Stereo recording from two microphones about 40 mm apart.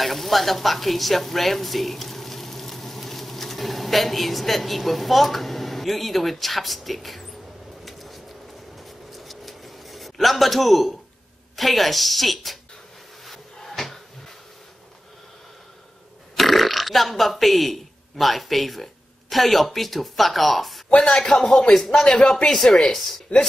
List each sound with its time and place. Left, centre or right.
0.0 s speech: centre
7.8 s a sound: centre
11.5 s a woman's voice: centre
13.2 s a sound: centre
16.3 s speech: centre
21.0 s speech: left
21.7 s speech: centre